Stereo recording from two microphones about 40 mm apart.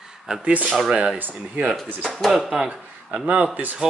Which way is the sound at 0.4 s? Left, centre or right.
Right.